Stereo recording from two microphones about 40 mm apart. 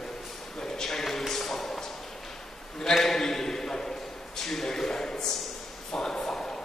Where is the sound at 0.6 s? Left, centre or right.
Centre.